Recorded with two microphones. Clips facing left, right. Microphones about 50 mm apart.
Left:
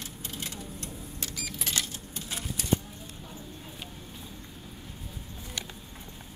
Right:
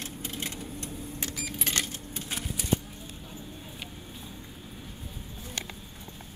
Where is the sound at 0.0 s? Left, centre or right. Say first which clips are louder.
Right 3 dB; right.